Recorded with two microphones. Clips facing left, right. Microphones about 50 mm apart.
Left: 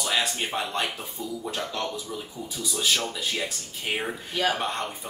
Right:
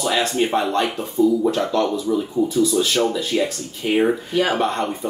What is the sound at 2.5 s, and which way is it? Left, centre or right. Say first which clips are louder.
Speech: right 5 dB; centre.